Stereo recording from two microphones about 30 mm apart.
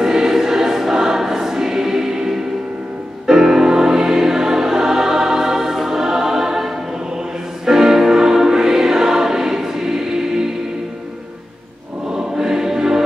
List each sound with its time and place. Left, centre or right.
0.0 s choir: centre
3.3 s music: centre
12.1 s choir: centre